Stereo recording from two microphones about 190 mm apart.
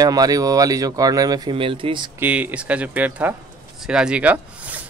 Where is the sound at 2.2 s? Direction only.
5° right (ahead or behind).